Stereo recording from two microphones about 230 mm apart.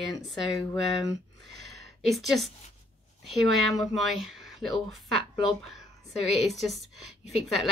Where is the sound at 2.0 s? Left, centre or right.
Centre.